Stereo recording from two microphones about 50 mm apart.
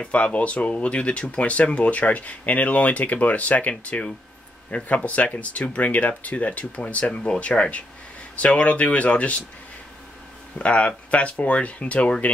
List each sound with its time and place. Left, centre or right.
0.0 s speech: left
10.6 s speech: left